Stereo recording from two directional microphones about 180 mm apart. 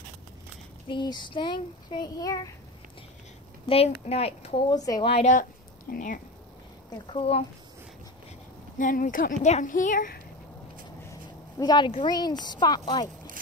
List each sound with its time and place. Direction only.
0.8 s speech: 25° left (ahead or behind)
3.6 s speech: 35° left (ahead or behind)
5.2 s speech: 45° left (ahead or behind)
7.1 s speech: 30° left (ahead or behind)
8.7 s a woman's voice: 45° left (ahead or behind)
11.6 s speech: 25° left (ahead or behind)